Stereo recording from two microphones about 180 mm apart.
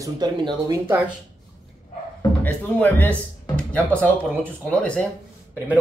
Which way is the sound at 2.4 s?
10° left (ahead or behind).